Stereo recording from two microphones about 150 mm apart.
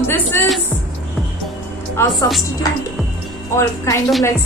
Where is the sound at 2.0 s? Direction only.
15° left (ahead or behind).